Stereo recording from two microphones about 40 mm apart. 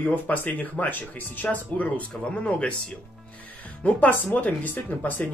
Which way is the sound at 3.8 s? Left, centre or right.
Left.